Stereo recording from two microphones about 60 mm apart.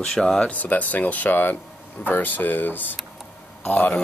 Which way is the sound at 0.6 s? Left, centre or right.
Left.